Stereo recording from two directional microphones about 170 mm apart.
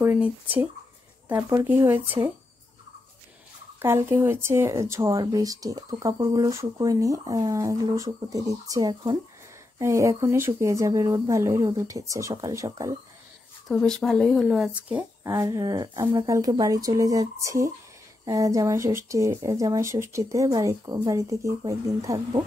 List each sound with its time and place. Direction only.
0.0 s speech: 10° right (ahead or behind)
3.8 s speech: 15° right (ahead or behind)
13.7 s speech: 5° left (ahead or behind); by 22.4 s 20° right (ahead or behind)